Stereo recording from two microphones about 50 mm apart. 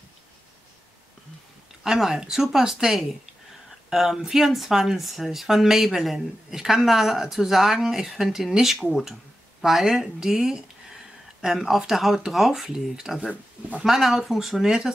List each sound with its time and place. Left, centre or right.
1.8 s speech: centre
13.3 s speech: right
13.8 s speech: centre